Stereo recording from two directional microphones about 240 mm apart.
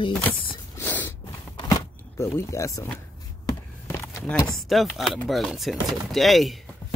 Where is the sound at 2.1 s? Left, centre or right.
Centre.